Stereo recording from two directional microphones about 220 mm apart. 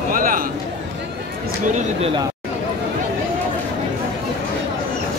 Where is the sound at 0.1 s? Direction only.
40° right (ahead or behind).